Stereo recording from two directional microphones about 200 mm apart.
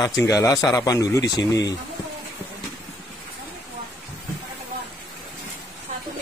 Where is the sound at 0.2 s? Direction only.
15° left (ahead or behind).